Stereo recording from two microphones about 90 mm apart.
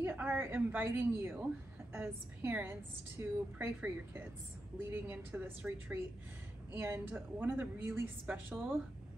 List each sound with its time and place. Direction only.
0.0 s a woman's voice: 20° right (ahead or behind)